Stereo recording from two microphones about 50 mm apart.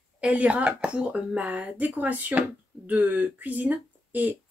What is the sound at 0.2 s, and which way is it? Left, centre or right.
Speech, right.